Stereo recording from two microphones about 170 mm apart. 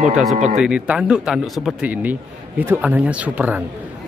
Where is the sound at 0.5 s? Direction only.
5° right (ahead or behind).